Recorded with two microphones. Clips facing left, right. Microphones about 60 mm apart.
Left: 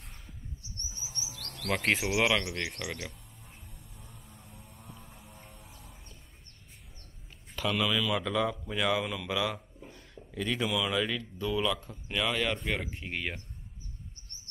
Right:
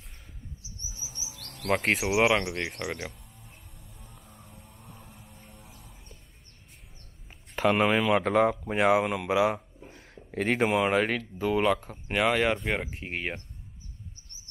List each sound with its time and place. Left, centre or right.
0.6 s chirp: centre; by 2.5 s right
2.8 s speech: right
4.0 s music: centre
4.5 s vehicle: centre
7.6 s speech: right
9.9 s a sound: right
10.7 s speech: right
12.3 s speech: right